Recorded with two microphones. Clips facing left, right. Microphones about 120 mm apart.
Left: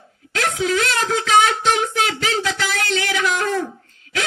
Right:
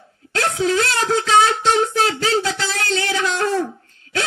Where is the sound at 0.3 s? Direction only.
35° right (ahead or behind).